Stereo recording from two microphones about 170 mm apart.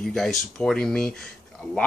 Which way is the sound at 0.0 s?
Centre (ahead or behind).